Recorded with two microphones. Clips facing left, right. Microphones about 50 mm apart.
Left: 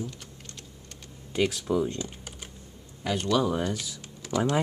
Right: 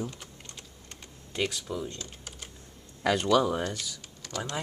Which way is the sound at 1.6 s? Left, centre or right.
Centre.